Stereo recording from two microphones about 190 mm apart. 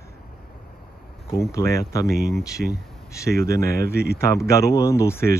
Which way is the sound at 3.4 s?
15° left (ahead or behind).